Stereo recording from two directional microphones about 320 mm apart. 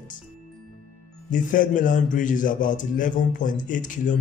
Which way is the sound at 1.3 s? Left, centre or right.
Left.